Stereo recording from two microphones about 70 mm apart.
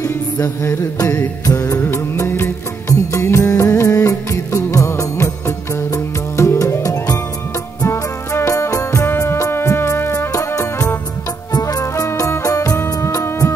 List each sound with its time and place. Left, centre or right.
1.4 s music: left
2.2 s music: left
7.9 s music: left
10.3 s music: left